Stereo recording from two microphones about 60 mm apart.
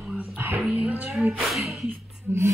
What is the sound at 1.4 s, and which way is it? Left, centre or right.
Speech, centre.